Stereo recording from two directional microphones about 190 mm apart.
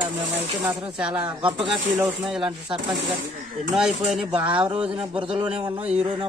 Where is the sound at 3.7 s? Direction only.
Centre (ahead or behind).